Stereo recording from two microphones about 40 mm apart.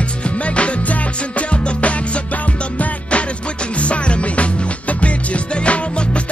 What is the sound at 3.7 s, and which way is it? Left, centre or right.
Music, left.